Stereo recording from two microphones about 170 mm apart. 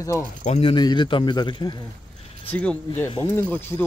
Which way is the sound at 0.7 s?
25° left (ahead or behind).